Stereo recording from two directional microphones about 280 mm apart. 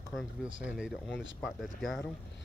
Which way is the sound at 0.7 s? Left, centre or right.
Centre.